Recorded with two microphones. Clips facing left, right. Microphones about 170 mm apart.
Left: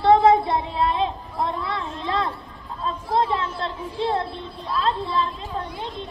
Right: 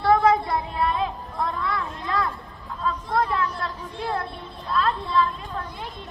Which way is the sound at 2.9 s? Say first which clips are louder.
Left 2 dB; 25° left (ahead or behind).